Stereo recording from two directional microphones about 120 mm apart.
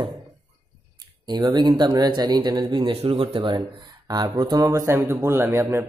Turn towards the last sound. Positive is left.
turn(degrees=-20)  # may be behind; listen again after turning